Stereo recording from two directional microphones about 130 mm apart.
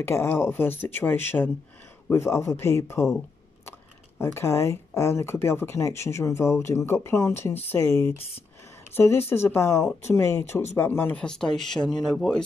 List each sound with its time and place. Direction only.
0.0 s speech: 20° left (ahead or behind)
4.2 s speech: 20° left (ahead or behind)
11.2 s speech: 5° left (ahead or behind)